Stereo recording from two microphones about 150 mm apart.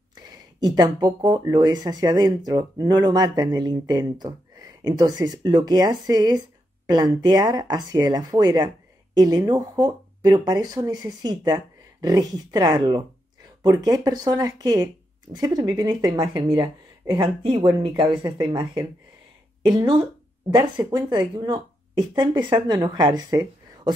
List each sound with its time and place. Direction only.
0.1 s speech: 25° right (ahead or behind)